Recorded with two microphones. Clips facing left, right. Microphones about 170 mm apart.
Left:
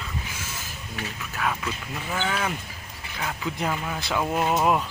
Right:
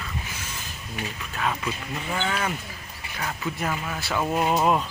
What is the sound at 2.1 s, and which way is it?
Speech, 5° left (ahead or behind).